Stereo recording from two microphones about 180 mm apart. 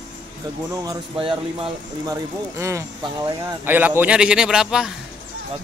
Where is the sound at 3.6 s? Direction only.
10° right (ahead or behind).